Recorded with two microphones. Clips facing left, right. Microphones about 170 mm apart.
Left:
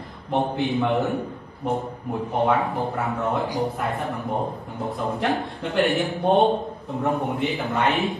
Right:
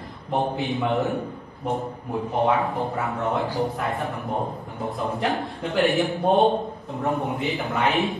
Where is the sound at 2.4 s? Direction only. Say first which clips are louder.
Left 1 dB; centre (ahead or behind).